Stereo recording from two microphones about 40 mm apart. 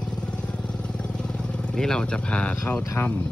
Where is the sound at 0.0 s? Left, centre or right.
Left.